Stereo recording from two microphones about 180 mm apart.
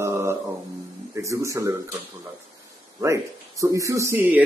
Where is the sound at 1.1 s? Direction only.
15° right (ahead or behind).